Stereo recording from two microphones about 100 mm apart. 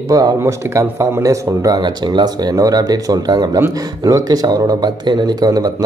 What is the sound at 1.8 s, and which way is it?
A man's voice, 45° right (ahead or behind).